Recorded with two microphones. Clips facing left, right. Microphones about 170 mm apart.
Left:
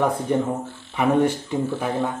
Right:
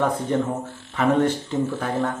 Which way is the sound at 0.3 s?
15° left (ahead or behind).